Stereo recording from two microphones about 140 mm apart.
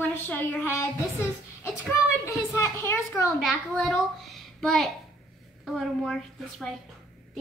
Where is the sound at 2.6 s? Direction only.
20° left (ahead or behind).